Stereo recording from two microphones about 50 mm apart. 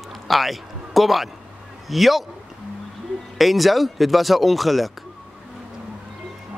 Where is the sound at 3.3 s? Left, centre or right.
Centre.